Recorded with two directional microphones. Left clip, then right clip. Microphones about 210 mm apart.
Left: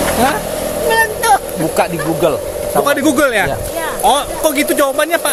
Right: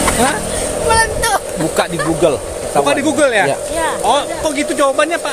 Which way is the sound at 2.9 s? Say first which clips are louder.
Left 1 dB; 55° left (ahead or behind).